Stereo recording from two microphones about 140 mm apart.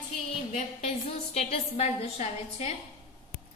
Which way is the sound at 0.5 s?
55° left (ahead or behind).